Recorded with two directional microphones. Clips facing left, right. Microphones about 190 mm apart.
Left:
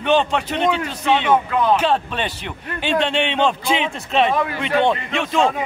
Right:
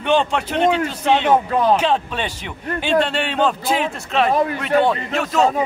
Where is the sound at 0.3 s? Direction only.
10° right (ahead or behind).